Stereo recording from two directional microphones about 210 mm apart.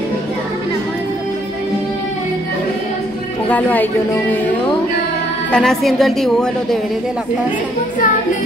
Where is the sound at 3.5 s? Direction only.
10° left (ahead or behind).